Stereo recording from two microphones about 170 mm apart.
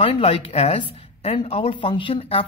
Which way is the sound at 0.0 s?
35° left (ahead or behind).